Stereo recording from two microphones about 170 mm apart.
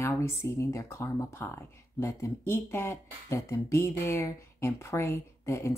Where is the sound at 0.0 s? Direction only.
15° left (ahead or behind).